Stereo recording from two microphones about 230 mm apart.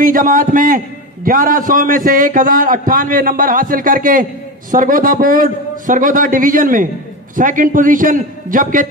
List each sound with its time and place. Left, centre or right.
0.0 s a man's voice: right